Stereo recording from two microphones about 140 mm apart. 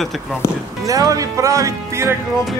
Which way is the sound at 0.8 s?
25° right (ahead or behind).